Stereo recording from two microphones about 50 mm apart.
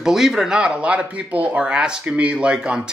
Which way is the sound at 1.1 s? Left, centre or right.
Right.